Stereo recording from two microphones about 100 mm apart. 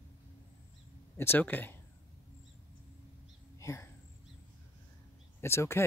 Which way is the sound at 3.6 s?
30° left (ahead or behind).